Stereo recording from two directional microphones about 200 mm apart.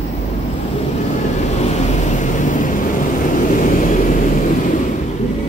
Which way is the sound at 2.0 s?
40° left (ahead or behind).